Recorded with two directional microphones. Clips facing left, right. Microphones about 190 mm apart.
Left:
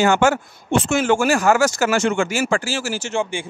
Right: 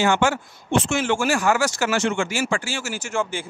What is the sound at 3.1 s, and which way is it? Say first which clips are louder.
Speech: left 1 dB; 20° left (ahead or behind).